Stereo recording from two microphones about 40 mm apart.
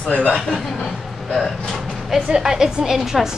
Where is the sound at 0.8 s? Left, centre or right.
Centre.